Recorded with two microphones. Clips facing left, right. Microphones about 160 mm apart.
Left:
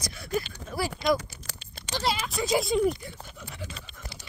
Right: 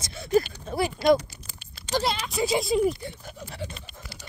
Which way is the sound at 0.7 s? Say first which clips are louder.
Right 3 dB; 30° right (ahead or behind).